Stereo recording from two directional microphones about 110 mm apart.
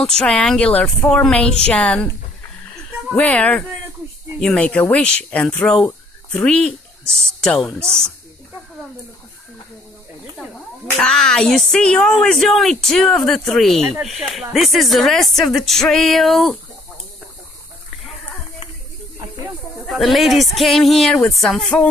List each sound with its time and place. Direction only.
0.2 s speech: 5° left (ahead or behind)
3.2 s speech: 15° left (ahead or behind)
11.0 s speech: 5° left (ahead or behind)
19.9 s speech: centre (ahead or behind)